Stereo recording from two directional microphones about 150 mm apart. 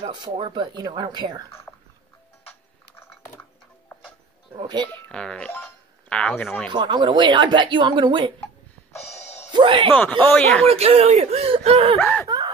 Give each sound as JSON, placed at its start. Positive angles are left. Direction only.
{"t": 0.0, "sound": "speech", "side_deg": -30}
{"t": 3.9, "sound": "music", "side_deg": 15}
{"t": 4.6, "sound": "speech", "side_deg": -30}
{"t": 4.8, "sound": "speech", "side_deg": 5}
{"t": 6.7, "sound": "speech", "side_deg": -30}
{"t": 9.2, "sound": "music", "side_deg": 45}
{"t": 9.5, "sound": "speech", "side_deg": -35}
{"t": 9.9, "sound": "speech", "side_deg": 10}
{"t": 10.6, "sound": "speech", "side_deg": -40}
{"t": 12.0, "sound": "speech", "side_deg": 10}